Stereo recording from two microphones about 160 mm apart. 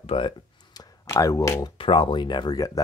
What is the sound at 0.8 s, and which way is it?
Speech, 20° left (ahead or behind).